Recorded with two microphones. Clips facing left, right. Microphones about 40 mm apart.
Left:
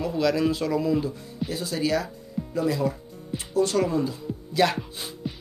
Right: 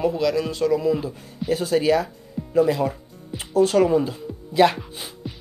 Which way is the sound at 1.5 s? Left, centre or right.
Right.